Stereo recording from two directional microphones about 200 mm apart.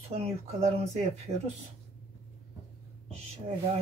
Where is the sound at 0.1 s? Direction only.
30° right (ahead or behind).